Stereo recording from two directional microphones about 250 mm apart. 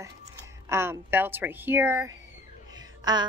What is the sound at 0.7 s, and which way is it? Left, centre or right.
A woman's voice, centre.